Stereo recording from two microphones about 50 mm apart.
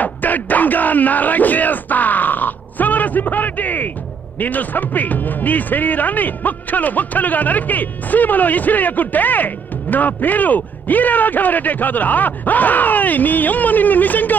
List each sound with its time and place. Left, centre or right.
0.0 s a man's voice: left